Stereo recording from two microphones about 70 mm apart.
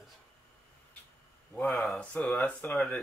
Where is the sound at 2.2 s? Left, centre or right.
Left.